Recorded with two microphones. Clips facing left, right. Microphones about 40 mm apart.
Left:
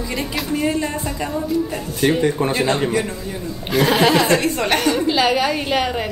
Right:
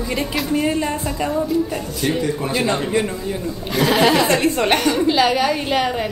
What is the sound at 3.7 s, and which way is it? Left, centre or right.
A woman's voice, centre.